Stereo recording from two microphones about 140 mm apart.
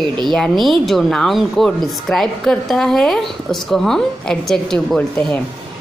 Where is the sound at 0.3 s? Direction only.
Centre (ahead or behind).